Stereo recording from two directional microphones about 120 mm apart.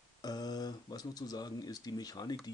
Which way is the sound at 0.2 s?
35° left (ahead or behind).